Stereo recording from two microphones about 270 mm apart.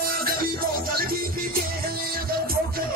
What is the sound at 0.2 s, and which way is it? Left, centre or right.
Music, right.